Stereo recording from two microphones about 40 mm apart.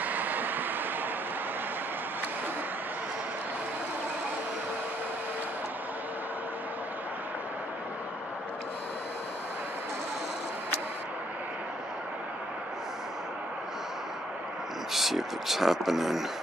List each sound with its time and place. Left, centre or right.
0.0 s vehicle: right
14.9 s speech: centre